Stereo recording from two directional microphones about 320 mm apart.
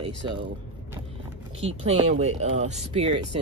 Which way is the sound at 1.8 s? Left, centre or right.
Centre.